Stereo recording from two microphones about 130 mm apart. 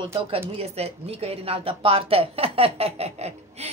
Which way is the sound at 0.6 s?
50° right (ahead or behind).